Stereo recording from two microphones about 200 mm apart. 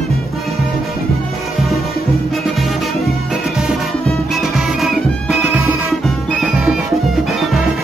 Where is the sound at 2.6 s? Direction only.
Centre (ahead or behind).